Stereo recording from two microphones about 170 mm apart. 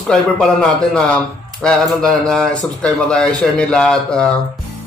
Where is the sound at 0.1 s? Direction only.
5° left (ahead or behind).